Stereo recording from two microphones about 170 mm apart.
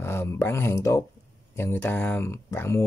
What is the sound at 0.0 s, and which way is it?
Speech, 15° left (ahead or behind).